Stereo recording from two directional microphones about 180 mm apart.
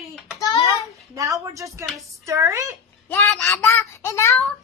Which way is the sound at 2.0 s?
15° right (ahead or behind).